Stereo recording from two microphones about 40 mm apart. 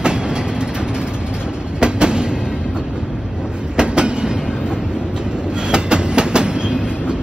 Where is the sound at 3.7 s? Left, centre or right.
Right.